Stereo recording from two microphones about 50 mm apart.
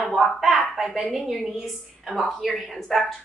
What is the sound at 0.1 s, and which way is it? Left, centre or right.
A woman's voice, centre.